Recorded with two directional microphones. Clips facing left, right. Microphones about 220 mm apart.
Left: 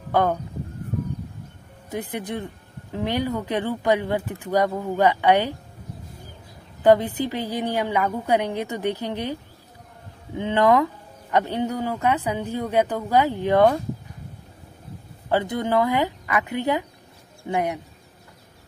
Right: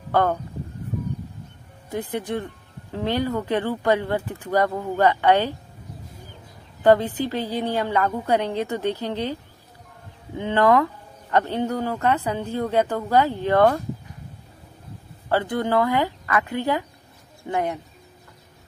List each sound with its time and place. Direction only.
0.1 s speech: 15° left (ahead or behind)
1.9 s speech: 15° left (ahead or behind)
6.8 s speech: 15° left (ahead or behind)
15.2 s speech: 20° left (ahead or behind)